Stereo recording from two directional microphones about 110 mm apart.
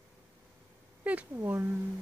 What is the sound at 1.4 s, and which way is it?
Speech, 15° right (ahead or behind).